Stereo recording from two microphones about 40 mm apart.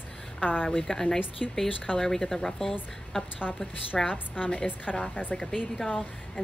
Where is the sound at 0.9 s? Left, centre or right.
Centre.